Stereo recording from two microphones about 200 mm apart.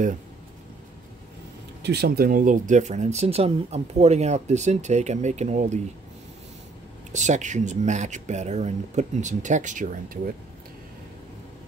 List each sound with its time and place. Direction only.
1.8 s speech: 55° right (ahead or behind); by 5.8 s 35° right (ahead or behind)
7.1 s speech: 35° right (ahead or behind)